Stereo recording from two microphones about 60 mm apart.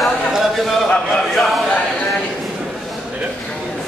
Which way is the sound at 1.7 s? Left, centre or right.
Centre.